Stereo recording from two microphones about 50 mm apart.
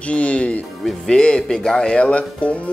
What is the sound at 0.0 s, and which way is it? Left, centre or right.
Speech, left.